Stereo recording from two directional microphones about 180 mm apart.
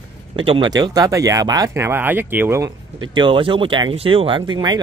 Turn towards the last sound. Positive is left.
turn(degrees=-25)  # may be behind; listen again after turning